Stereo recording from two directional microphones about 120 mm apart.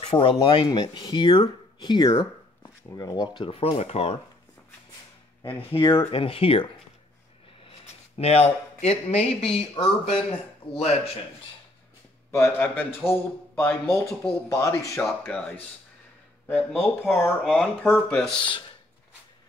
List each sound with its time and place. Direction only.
0.0 s speech: 50° left (ahead or behind)
0.7 s speech: 30° left (ahead or behind)
2.1 s a sound: 30° left (ahead or behind)
3.3 s speech: 50° left (ahead or behind)
5.6 s speech: 50° left (ahead or behind)
12.3 s a man's voice: 25° left (ahead or behind)
15.2 s speech: 15° left (ahead or behind)
16.7 s speech: centre (ahead or behind)